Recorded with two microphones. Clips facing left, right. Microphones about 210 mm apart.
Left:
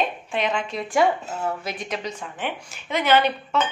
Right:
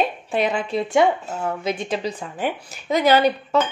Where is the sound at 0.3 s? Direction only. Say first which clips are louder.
Right 4 dB; 35° right (ahead or behind).